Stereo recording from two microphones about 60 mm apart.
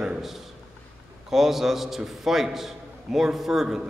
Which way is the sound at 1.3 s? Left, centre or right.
Centre.